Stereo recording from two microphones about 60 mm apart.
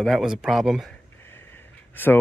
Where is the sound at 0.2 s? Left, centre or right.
Centre.